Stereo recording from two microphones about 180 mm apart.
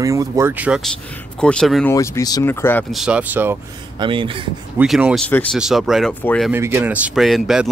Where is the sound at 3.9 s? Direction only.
30° right (ahead or behind).